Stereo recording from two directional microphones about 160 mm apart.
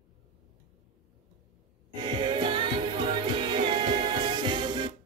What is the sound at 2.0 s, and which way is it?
Music, 30° right (ahead or behind).